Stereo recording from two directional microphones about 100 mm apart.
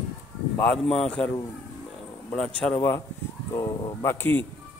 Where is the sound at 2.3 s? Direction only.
10° left (ahead or behind).